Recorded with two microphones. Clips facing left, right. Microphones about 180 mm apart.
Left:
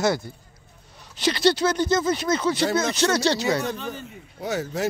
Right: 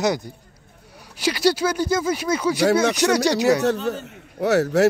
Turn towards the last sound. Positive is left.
turn(degrees=-70)  # may be behind; listen again after turning